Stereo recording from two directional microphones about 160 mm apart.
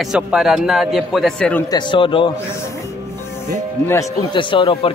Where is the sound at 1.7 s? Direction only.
30° left (ahead or behind).